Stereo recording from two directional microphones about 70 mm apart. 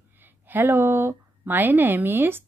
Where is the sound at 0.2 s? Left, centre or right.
Right.